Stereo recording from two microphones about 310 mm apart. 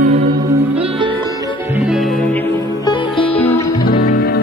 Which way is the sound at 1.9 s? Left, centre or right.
Centre.